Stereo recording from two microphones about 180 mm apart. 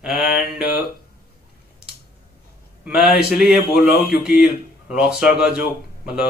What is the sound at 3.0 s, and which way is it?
Speech, 60° left (ahead or behind).